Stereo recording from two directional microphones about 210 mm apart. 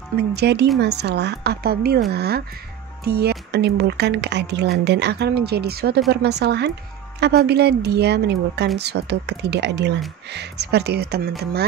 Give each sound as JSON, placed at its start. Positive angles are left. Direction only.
{"t": 0.3, "sound": "speech", "side_deg": -50}